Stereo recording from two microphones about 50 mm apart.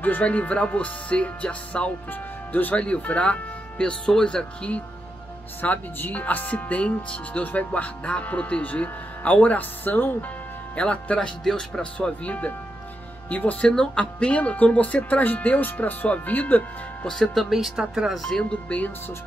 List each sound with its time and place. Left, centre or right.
0.0 s speech: left
2.0 s speech: left
2.8 s speech: left
5.6 s speech: left
10.8 s speech: left
11.1 s speech: centre; by 13.7 s left
13.7 s speech: centre; by 16.6 s left
17.0 s speech: centre
18.2 s speech: centre
18.5 s speech: left